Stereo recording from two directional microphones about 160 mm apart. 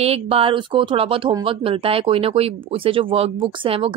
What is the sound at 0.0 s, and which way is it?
Speech, 40° right (ahead or behind).